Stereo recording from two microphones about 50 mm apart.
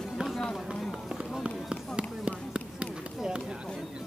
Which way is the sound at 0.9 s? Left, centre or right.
Centre.